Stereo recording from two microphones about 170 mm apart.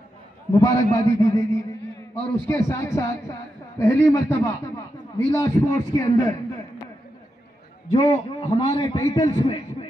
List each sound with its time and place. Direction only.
0.5 s a man's voice: 20° left (ahead or behind)
7.9 s a man's voice: 35° left (ahead or behind)